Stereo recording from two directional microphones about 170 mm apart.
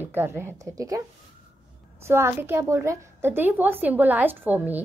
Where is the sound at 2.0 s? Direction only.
15° right (ahead or behind).